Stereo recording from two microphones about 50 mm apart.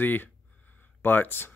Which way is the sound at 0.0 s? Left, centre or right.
Left.